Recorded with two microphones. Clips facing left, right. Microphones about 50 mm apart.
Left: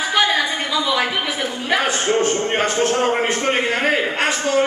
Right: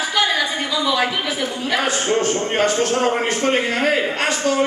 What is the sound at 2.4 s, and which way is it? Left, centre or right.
A man's voice, left.